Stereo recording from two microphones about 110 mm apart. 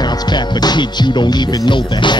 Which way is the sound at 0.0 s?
40° left (ahead or behind).